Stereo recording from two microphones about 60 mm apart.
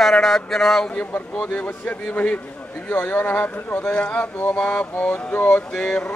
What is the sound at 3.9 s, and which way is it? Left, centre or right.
A man's voice, left.